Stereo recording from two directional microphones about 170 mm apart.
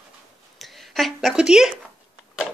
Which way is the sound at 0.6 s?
Centre (ahead or behind).